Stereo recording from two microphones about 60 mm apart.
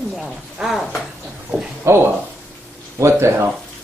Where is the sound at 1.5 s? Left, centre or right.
Centre.